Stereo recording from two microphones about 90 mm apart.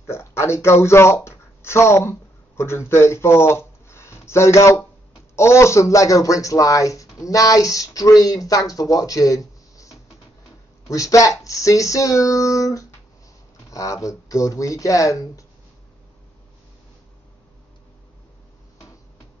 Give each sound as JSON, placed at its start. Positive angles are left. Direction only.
{"t": 0.0, "sound": "speech", "side_deg": 30}